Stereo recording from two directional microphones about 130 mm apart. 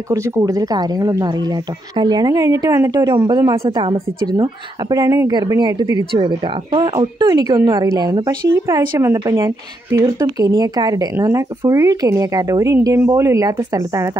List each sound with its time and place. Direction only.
0.1 s speech: 25° right (ahead or behind)